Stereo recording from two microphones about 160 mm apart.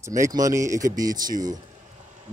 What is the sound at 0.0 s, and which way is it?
Speech, 20° right (ahead or behind).